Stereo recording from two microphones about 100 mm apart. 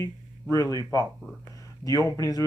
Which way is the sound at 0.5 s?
35° left (ahead or behind).